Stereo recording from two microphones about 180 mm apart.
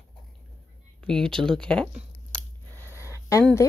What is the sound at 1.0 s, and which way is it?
Speech, 5° left (ahead or behind).